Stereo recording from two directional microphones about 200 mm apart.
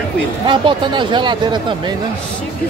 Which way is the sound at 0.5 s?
25° right (ahead or behind).